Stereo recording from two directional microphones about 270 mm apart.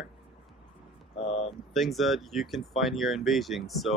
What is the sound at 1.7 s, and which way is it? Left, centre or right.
Speech, centre.